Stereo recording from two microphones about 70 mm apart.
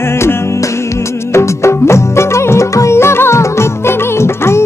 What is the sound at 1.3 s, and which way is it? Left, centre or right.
Music, left.